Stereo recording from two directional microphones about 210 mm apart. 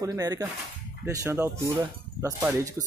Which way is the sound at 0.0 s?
15° right (ahead or behind).